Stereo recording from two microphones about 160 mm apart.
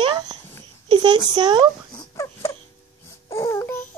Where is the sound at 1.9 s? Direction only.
20° left (ahead or behind).